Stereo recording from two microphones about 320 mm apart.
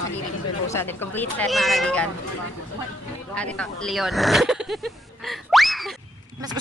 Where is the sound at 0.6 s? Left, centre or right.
Centre.